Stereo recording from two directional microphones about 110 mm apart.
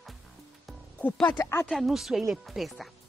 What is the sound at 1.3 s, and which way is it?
Speech, 25° left (ahead or behind).